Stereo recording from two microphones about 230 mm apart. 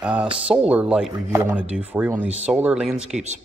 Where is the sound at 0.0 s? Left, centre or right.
Centre.